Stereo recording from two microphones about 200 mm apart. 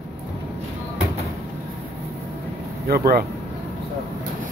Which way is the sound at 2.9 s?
50° right (ahead or behind).